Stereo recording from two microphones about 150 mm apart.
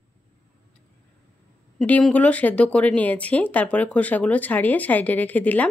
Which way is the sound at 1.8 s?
5° left (ahead or behind).